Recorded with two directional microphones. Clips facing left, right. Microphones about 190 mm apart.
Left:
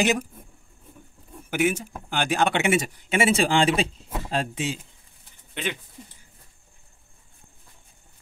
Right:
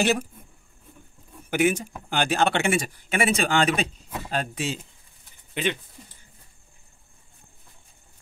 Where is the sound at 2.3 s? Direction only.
15° left (ahead or behind).